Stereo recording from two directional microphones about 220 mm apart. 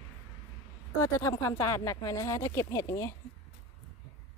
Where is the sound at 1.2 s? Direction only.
15° left (ahead or behind).